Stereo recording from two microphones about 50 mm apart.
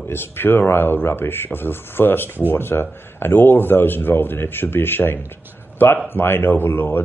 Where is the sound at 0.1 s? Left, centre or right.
Left.